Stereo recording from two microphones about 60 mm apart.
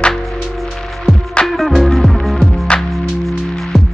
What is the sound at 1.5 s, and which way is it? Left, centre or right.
Music, centre.